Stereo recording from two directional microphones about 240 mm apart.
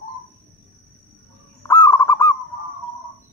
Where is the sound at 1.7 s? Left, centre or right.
Centre.